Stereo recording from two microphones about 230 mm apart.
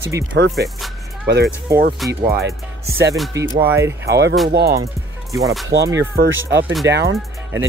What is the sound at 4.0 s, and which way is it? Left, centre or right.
Speech, right.